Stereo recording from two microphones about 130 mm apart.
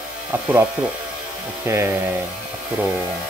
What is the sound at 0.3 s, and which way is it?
Speech, 10° right (ahead or behind).